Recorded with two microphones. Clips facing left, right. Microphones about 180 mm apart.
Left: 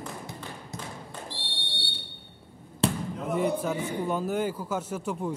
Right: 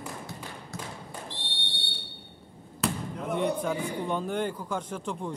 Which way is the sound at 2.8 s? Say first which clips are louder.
Left 4 dB; 30° left (ahead or behind).